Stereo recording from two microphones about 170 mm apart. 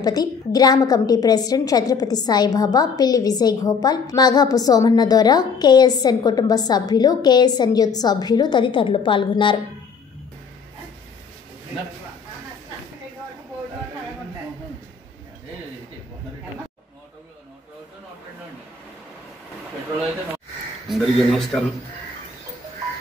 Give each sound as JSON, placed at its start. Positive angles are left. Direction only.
{"t": 0.0, "sound": "a woman's voice", "side_deg": 20}
{"t": 20.9, "sound": "speech", "side_deg": 0}